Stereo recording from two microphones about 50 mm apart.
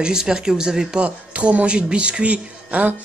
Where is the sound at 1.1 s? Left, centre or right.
Right.